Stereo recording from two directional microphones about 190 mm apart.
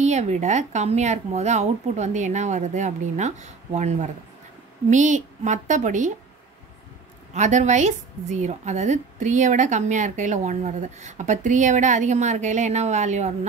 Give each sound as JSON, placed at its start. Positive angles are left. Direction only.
{"t": 0.0, "sound": "a woman's voice", "side_deg": -35}
{"t": 7.3, "sound": "a woman's voice", "side_deg": -40}